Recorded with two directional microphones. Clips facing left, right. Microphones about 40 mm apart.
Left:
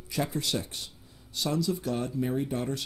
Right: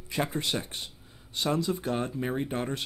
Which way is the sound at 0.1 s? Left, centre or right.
Right.